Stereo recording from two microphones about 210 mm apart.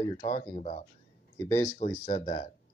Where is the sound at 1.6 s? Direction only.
40° left (ahead or behind).